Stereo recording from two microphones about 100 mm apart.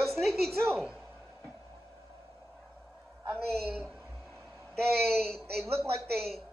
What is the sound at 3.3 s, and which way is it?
Speech, 20° right (ahead or behind).